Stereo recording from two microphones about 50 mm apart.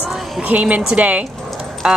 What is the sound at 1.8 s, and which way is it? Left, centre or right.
Speech, centre.